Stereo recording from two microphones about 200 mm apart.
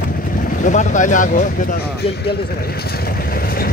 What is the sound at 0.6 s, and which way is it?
Speech, 40° left (ahead or behind).